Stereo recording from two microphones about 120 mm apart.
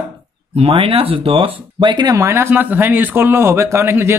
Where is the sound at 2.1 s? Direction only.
25° right (ahead or behind).